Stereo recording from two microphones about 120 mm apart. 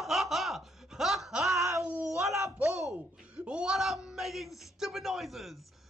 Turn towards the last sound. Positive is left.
turn(degrees=0)  # may be behind; listen again after turning